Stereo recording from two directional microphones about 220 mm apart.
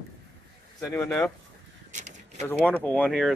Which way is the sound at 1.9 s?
35° right (ahead or behind).